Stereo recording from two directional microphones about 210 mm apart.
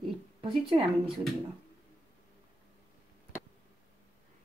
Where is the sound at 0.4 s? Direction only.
25° right (ahead or behind).